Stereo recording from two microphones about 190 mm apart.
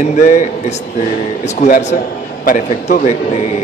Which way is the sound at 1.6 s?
35° left (ahead or behind).